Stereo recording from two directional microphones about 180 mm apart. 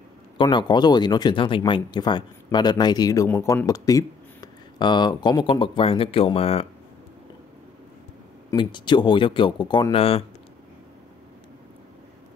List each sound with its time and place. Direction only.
0.4 s speech: 25° left (ahead or behind)
8.5 s speech: 25° left (ahead or behind)